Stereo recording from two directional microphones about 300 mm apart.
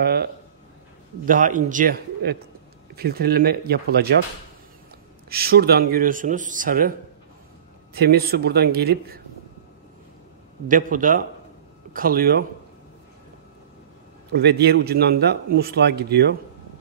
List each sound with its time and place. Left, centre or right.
0.0 s a sound: right
1.2 s a man's voice: right
5.3 s speech: right
7.9 s a man's voice: right
10.7 s speech: right
14.3 s a man's voice: right